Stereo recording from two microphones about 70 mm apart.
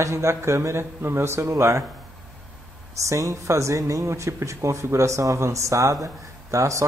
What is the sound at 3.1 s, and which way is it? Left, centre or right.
A woman's voice, right.